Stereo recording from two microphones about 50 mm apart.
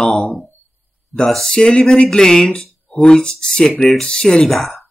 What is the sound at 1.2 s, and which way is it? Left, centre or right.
Speech, centre.